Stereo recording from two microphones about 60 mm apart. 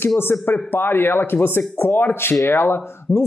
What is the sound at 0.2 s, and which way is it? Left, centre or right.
Speech, left.